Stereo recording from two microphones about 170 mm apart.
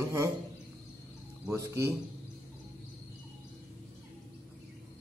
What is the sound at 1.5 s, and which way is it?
Speech, 20° right (ahead or behind).